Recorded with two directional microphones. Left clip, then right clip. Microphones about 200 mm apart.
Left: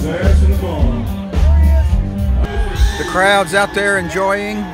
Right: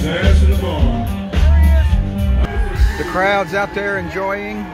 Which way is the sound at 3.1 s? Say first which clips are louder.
Left 4 dB; 5° left (ahead or behind).